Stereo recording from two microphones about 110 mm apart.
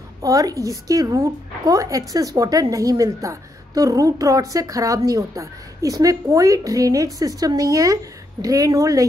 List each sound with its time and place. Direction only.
0.2 s a woman's voice: 30° right (ahead or behind)